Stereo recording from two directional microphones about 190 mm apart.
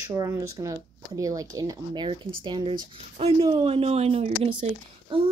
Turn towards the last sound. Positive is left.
turn(degrees=-25)  # may be behind; listen again after turning